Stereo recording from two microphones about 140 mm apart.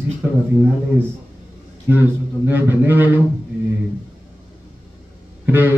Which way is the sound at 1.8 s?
15° right (ahead or behind).